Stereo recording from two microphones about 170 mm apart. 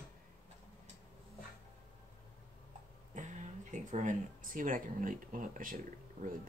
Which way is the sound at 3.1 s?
45° right (ahead or behind).